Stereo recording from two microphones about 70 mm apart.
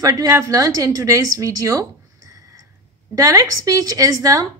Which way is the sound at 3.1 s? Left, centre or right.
Right.